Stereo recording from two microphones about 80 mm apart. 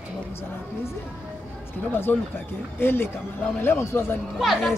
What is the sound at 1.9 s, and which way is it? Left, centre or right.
Speech, left.